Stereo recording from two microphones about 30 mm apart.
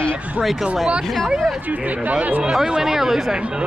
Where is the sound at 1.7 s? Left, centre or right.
Right.